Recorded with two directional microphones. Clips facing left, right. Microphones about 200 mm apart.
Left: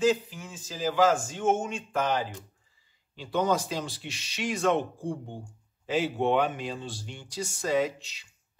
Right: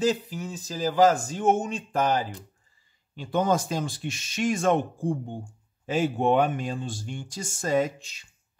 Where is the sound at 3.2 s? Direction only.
50° right (ahead or behind).